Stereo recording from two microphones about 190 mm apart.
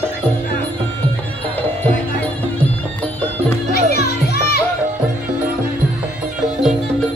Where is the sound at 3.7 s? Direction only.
55° left (ahead or behind).